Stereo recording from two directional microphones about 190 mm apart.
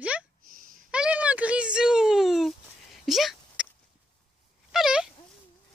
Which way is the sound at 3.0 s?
Centre (ahead or behind).